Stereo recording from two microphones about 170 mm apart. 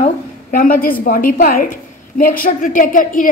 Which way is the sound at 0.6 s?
55° left (ahead or behind).